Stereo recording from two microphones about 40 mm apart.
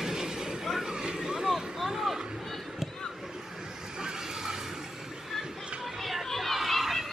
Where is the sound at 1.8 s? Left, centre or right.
Centre.